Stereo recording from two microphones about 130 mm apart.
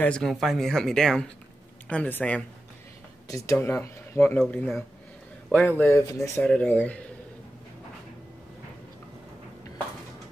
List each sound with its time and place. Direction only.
0.0 s speech: 5° left (ahead or behind)
3.3 s speech: 25° left (ahead or behind)
5.8 s speech: 15° left (ahead or behind)
6.4 s speech: 10° left (ahead or behind)